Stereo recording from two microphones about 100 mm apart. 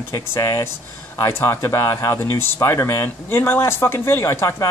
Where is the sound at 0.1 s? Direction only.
25° left (ahead or behind).